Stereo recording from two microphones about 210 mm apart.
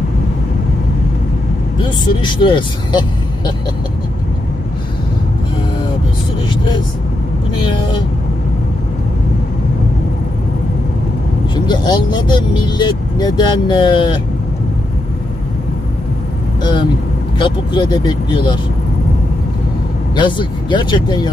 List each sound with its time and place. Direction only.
1.8 s speech: 20° left (ahead or behind)
7.6 s speech: 20° left (ahead or behind)
11.5 s speech: 20° left (ahead or behind)
17.4 s speech: 20° left (ahead or behind)
20.2 s speech: 20° left (ahead or behind)